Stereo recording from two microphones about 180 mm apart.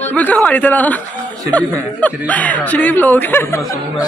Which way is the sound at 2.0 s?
10° left (ahead or behind).